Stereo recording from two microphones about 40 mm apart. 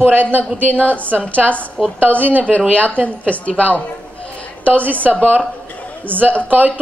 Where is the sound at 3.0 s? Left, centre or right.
Left.